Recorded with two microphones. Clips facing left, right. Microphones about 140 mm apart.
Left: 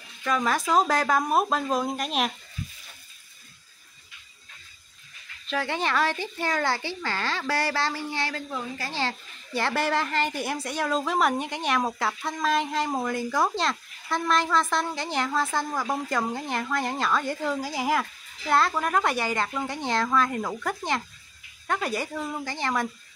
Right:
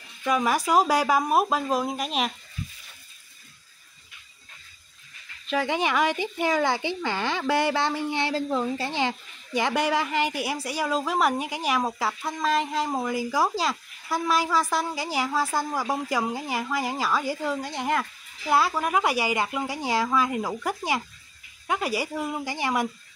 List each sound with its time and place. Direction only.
0.2 s a woman's voice: 10° right (ahead or behind)
5.5 s a woman's voice: 10° right (ahead or behind)